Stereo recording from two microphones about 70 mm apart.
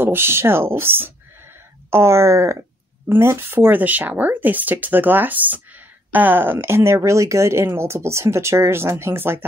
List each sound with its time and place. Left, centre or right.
0.0 s speech: right